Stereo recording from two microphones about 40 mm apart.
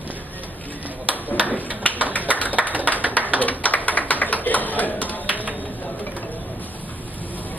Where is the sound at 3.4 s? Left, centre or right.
Left.